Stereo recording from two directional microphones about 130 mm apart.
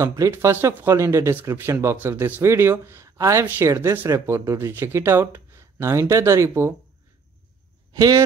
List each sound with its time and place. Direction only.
0.0 s speech: 25° right (ahead or behind)